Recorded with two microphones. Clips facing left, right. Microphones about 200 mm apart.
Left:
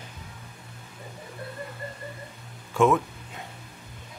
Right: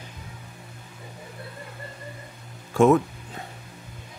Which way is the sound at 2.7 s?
40° right (ahead or behind).